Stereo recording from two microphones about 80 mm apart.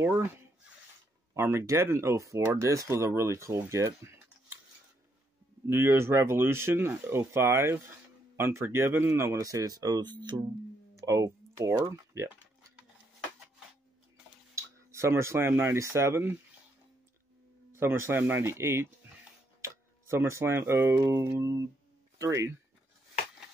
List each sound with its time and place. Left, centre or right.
0.0 s speech: right
5.7 s speech: right
11.0 s speech: right
14.5 s speech: right
17.7 s speech: right